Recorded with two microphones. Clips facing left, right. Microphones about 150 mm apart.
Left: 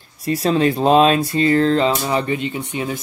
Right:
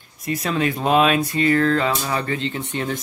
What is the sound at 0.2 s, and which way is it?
Speech, 30° left (ahead or behind).